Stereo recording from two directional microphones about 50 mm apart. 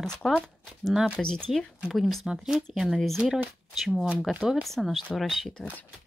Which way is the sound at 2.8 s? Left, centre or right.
Centre.